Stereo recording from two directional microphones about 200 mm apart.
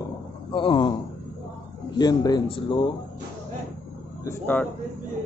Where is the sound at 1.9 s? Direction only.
20° left (ahead or behind).